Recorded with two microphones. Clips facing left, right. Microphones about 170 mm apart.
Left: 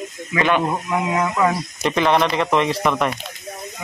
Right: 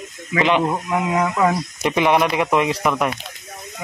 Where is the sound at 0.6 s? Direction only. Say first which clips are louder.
Right 1 dB; 5° right (ahead or behind).